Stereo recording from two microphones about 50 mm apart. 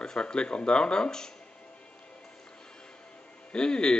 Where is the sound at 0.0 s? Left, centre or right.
Centre.